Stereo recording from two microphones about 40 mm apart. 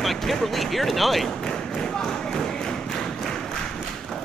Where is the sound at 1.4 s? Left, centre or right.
Centre.